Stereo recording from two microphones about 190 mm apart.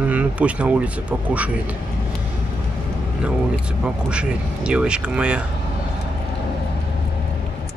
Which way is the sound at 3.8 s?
5° right (ahead or behind).